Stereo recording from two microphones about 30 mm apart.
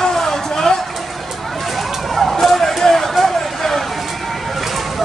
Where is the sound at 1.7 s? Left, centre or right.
Centre.